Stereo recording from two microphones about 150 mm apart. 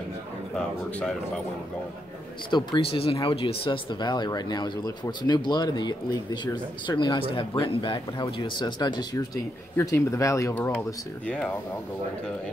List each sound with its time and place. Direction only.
2.5 s speech: 35° left (ahead or behind); by 11.5 s 5° left (ahead or behind)